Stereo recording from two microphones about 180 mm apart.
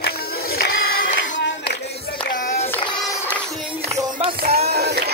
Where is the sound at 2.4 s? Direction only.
40° left (ahead or behind).